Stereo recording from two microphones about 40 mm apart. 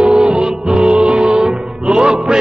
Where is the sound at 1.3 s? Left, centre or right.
Centre.